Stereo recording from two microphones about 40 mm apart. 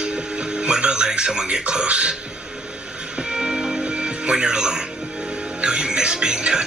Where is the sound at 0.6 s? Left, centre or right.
Right.